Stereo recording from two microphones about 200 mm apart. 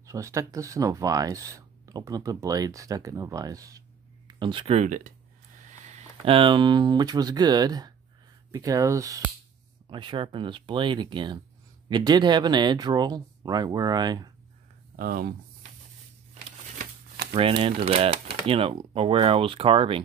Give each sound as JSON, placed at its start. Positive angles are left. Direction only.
{"t": 0.0, "sound": "speech", "side_deg": -15}
{"t": 15.0, "sound": "speech", "side_deg": -50}
{"t": 17.3, "sound": "speech", "side_deg": -25}